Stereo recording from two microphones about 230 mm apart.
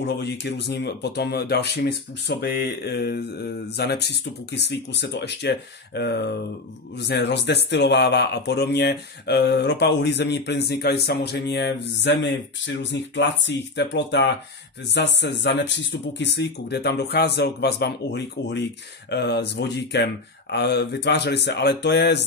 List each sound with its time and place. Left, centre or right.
0.0 s speech: left